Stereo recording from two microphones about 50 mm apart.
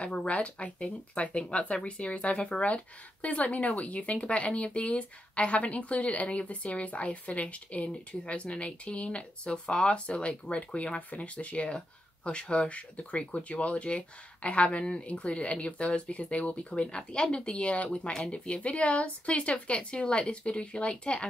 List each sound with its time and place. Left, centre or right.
0.0 s speech: left